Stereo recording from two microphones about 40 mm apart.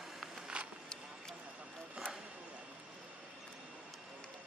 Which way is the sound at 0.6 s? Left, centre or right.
Right.